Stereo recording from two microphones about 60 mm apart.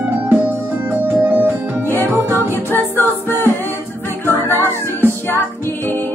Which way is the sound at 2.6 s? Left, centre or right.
Left.